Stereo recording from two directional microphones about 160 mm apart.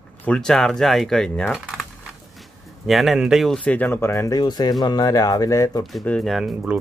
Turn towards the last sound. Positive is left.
turn(degrees=-5)  # may be behind; listen again after turning